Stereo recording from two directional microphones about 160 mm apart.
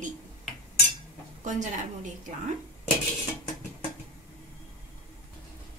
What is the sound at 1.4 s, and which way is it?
Speech, 50° right (ahead or behind).